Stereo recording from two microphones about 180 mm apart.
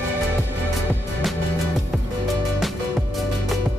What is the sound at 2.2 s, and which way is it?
Music, centre (ahead or behind).